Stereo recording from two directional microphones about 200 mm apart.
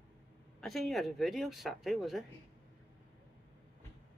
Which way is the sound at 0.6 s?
Centre (ahead or behind).